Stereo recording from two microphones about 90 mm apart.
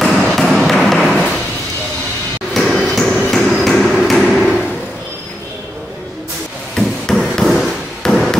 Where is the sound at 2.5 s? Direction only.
5° left (ahead or behind).